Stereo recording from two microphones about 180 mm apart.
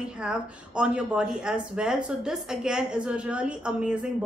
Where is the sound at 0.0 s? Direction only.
5° right (ahead or behind).